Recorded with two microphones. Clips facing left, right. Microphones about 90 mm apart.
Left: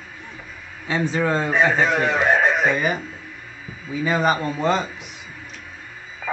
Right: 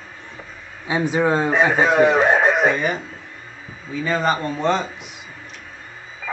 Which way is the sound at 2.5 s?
40° right (ahead or behind).